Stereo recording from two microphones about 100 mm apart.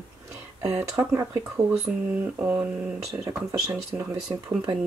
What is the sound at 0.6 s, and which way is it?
Speech, 25° right (ahead or behind).